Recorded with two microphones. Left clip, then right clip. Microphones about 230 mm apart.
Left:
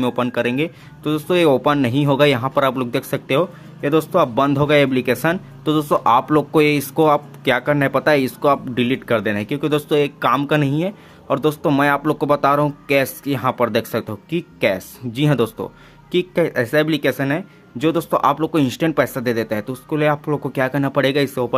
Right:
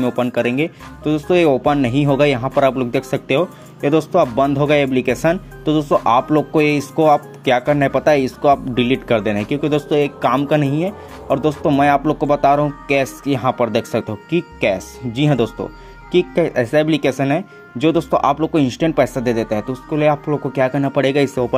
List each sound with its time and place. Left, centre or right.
0.0 s speech: centre